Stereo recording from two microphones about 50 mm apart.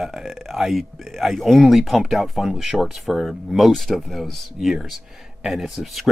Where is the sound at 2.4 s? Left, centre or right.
Centre.